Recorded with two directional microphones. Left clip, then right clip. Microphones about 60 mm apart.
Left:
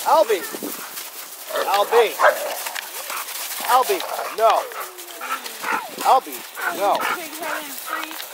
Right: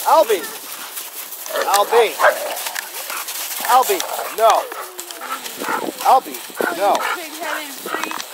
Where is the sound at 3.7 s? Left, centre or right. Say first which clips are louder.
Right 3 dB; right.